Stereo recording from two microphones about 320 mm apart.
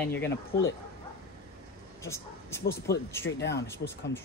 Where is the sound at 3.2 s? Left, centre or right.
Left.